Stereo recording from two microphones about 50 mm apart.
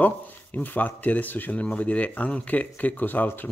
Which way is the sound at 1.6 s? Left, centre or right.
Left.